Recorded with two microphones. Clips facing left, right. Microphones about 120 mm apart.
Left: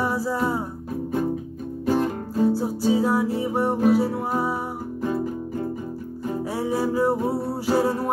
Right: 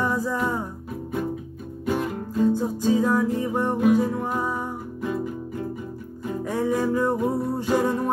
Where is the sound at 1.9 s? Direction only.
35° left (ahead or behind).